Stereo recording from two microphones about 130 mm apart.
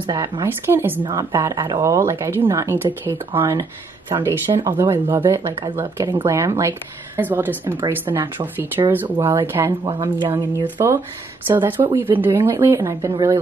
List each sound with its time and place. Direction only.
0.0 s speech: 30° right (ahead or behind)
0.5 s a woman's voice: 15° right (ahead or behind)
5.5 s speech: 40° right (ahead or behind)
5.8 s a woman's voice: 20° right (ahead or behind)
8.8 s speech: 35° right (ahead or behind)
9.2 s speech: 20° right (ahead or behind)
9.8 s speech: 35° right (ahead or behind)
11.4 s a woman's voice: 15° right (ahead or behind)